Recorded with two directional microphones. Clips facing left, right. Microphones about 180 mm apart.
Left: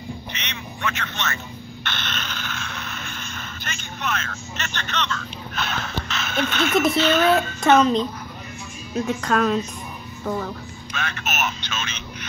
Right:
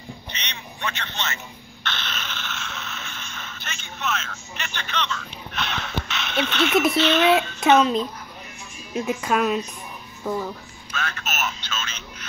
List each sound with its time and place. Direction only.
0.3 s telephone: 35° right (ahead or behind)
1.8 s a sound: centre (ahead or behind)
4.6 s speech: 10° right (ahead or behind)
10.9 s speech: 15° left (ahead or behind)